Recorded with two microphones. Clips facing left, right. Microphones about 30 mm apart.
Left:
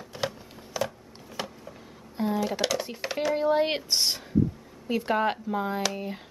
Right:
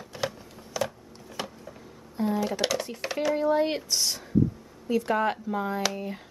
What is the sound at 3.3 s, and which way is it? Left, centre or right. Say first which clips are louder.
Speech: even; left.